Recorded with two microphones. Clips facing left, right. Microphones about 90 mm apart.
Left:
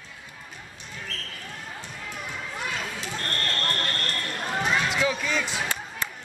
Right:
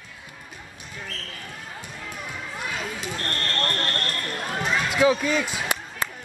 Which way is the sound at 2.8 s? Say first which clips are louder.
Right 2 dB; centre (ahead or behind).